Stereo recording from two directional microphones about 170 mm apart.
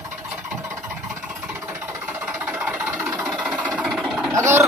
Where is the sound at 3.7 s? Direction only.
Centre (ahead or behind).